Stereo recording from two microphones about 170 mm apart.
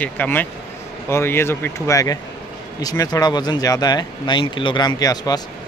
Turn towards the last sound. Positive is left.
turn(degrees=20)  # may be behind; listen again after turning